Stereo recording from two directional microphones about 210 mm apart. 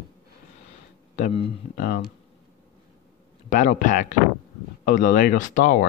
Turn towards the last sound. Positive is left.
turn(degrees=35)  # may be behind; listen again after turning